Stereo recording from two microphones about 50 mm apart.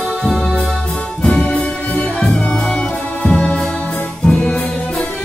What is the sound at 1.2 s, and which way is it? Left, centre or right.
Music, left.